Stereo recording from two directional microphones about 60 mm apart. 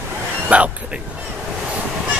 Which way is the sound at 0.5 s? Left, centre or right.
Right.